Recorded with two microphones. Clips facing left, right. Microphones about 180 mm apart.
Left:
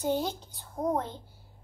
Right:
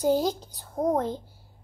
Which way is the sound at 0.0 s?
40° right (ahead or behind).